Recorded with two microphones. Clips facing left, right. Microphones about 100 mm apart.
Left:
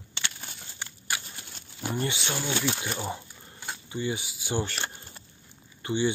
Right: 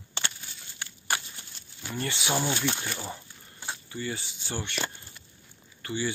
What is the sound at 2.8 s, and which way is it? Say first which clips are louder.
Speech: left 4 dB; 20° left (ahead or behind).